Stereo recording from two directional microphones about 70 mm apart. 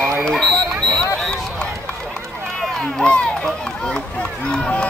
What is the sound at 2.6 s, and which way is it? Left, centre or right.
Run, centre.